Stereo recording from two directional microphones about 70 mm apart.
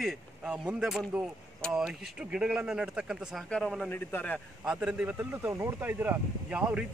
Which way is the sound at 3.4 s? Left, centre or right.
Centre.